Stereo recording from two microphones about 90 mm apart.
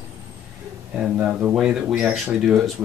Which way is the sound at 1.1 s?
20° right (ahead or behind).